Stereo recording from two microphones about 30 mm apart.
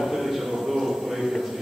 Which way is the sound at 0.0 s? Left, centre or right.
Centre.